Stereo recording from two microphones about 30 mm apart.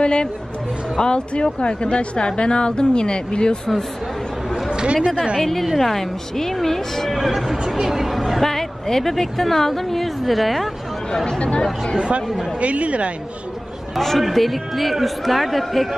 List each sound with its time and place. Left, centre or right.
0.0 s speech: left
4.6 s speech: right
5.4 s a woman's voice: centre
7.2 s speech: centre
8.4 s a woman's voice: centre
11.2 s speech: left
11.6 s speech: left
12.0 s speech: right
12.5 s a woman's voice: right
13.9 s a woman's voice: centre